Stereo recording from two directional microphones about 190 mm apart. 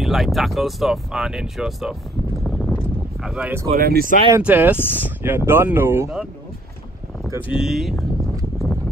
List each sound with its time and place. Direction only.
0.0 s speech: centre (ahead or behind)
2.4 s a sound: 5° left (ahead or behind)
3.7 s speech: 50° right (ahead or behind)
4.4 s speech: 10° right (ahead or behind)
7.2 s speech: 10° right (ahead or behind)